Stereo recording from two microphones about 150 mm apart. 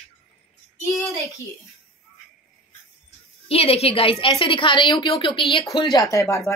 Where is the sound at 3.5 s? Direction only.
40° left (ahead or behind).